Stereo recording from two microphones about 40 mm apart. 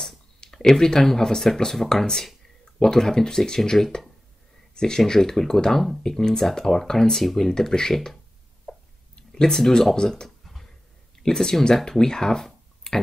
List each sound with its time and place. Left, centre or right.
0.5 s speech: centre
8.7 s a sound: centre
9.3 s speech: centre
10.4 s a sound: centre
11.2 s speech: centre
12.9 s clicking: left